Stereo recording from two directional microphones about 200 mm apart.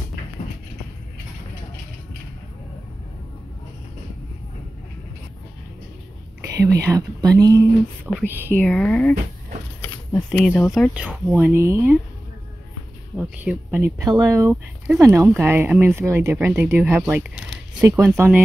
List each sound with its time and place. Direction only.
6.5 s speech: 15° right (ahead or behind)
8.5 s speech: 5° left (ahead or behind); by 12.0 s 10° right (ahead or behind)
13.2 s speech: 5° right (ahead or behind)